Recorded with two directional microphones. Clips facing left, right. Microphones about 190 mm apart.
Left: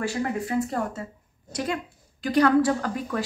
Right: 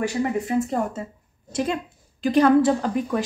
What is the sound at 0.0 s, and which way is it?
A woman's voice, 20° right (ahead or behind).